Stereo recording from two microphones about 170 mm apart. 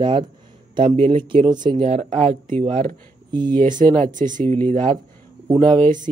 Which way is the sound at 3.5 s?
50° right (ahead or behind).